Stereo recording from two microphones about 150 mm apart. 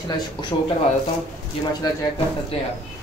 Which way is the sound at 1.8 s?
30° left (ahead or behind).